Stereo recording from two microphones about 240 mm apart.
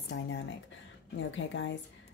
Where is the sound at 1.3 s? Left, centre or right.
Left.